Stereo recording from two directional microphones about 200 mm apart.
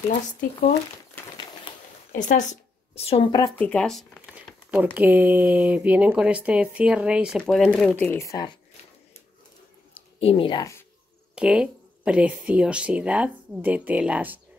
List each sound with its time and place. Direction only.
1.7 s a sound: 25° left (ahead or behind)
2.1 s speech: 40° left (ahead or behind)
3.0 s speech: 30° left (ahead or behind)
3.5 s a sound: 5° left (ahead or behind)
4.9 s speech: 10° right (ahead or behind); by 8.5 s 15° left (ahead or behind)
9.9 s speech: 25° left (ahead or behind)
11.3 s speech: 5° right (ahead or behind)